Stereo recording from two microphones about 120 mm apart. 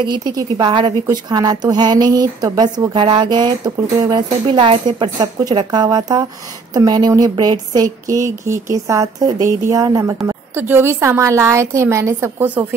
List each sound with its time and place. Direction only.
0.0 s a woman's voice: 35° right (ahead or behind)
10.2 s speech: 20° right (ahead or behind)